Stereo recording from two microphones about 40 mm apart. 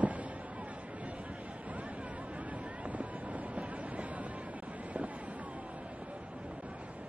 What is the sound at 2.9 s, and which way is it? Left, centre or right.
Boat, right.